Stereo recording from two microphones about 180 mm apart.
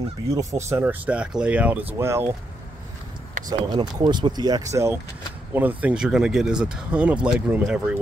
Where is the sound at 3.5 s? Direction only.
25° right (ahead or behind).